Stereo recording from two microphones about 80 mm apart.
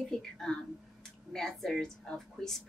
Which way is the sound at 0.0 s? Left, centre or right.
Centre.